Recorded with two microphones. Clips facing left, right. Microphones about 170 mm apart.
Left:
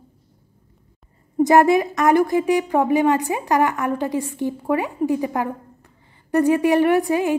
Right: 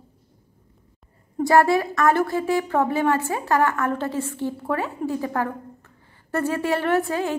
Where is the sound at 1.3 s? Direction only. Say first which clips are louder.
Left 3 dB; 20° left (ahead or behind).